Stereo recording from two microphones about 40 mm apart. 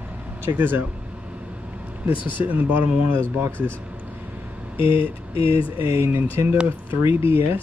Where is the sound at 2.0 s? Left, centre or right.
Right.